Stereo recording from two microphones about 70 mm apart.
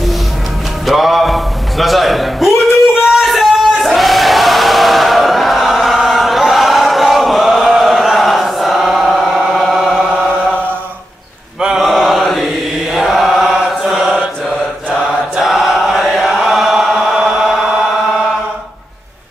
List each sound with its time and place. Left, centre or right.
0.8 s a sound: centre
3.1 s crowd: centre
11.6 s mantra: centre
15.3 s chant: centre